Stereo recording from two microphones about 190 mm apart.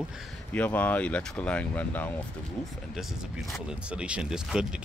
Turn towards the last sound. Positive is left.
turn(degrees=-5)  # may be behind; listen again after turning